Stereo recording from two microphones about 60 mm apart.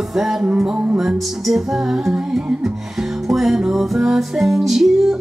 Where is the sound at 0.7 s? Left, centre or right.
Right.